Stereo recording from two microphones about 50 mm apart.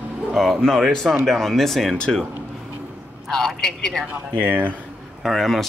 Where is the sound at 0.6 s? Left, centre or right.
Centre.